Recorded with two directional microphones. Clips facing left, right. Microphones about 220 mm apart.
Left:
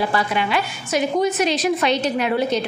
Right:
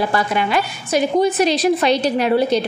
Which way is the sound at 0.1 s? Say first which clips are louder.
Right 2 dB; 45° right (ahead or behind).